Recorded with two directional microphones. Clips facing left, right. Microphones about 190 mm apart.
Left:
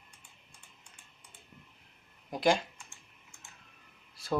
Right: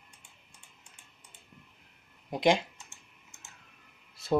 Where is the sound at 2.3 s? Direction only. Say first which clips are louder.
Right 2 dB; 20° right (ahead or behind).